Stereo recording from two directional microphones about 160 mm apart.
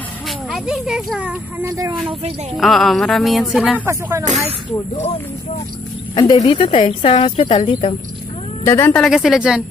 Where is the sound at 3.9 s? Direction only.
20° right (ahead or behind).